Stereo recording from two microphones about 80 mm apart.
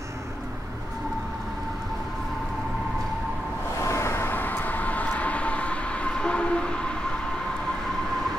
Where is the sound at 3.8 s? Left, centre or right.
Left; by 7.0 s centre.